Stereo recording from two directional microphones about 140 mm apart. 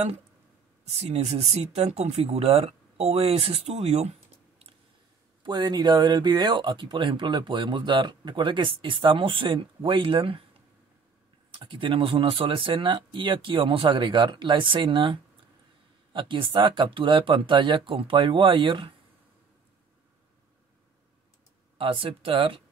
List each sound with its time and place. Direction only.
0.8 s speech: 50° right (ahead or behind)
5.4 s speech: 35° right (ahead or behind)
11.5 s speech: 35° right (ahead or behind)
21.7 s speech: 40° right (ahead or behind)